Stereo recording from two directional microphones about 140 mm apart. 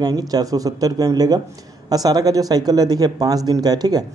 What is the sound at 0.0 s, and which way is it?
Speech, 25° right (ahead or behind).